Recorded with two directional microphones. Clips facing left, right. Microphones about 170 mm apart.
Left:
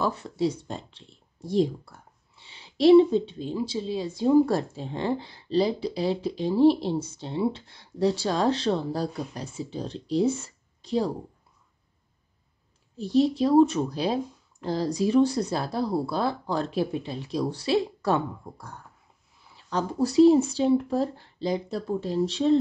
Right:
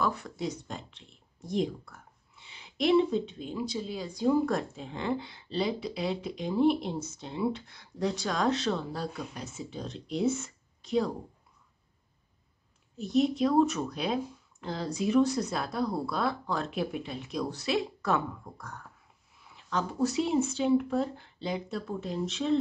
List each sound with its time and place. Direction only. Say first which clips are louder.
0.0 s speech: left 5 dB; 25° left (ahead or behind)
12.9 s speech: left 4 dB; 30° left (ahead or behind)